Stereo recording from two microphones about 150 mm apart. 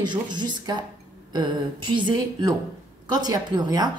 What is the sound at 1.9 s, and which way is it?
A woman's voice, 30° right (ahead or behind).